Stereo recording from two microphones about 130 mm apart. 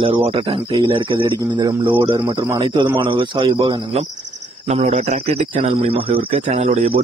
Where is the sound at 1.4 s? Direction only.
30° right (ahead or behind); by 4.1 s 45° right (ahead or behind).